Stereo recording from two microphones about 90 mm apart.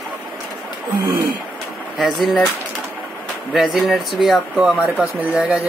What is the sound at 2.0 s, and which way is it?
Speech, centre (ahead or behind).